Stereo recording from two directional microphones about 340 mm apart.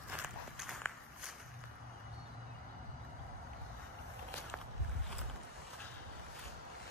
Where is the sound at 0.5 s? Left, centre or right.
Centre.